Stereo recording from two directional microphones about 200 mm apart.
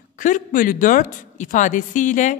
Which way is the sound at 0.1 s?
40° left (ahead or behind).